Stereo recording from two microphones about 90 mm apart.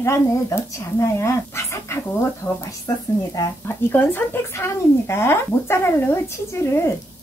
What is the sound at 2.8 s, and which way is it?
Speech, 45° left (ahead or behind).